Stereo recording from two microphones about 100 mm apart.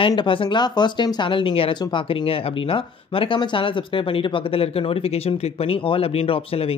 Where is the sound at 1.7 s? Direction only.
50° left (ahead or behind); by 6.7 s 70° left (ahead or behind).